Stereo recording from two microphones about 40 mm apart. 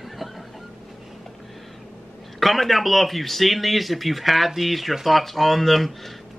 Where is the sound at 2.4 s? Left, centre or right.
Centre.